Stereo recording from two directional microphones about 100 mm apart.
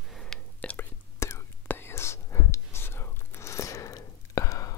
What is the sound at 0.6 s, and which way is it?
Whispering, 15° left (ahead or behind).